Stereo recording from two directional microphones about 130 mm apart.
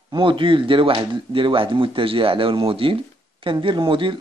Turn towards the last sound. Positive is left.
turn(degrees=-40)  # may be behind; listen again after turning